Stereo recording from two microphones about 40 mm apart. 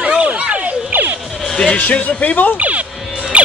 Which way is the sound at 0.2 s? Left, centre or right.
Right.